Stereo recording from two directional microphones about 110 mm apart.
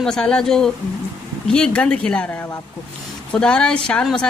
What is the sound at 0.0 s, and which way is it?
Speech, 5° left (ahead or behind).